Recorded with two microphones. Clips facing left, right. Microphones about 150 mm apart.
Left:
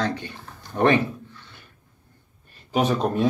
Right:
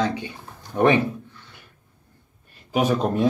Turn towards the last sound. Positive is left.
turn(degrees=-10)  # may be behind; listen again after turning